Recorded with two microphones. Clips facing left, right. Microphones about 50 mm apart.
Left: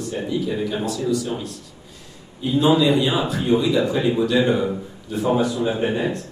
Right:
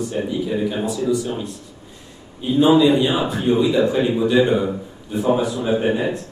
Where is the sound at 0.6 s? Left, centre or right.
Right.